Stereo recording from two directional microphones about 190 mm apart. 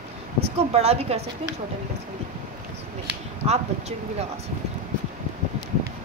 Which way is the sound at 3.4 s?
35° right (ahead or behind).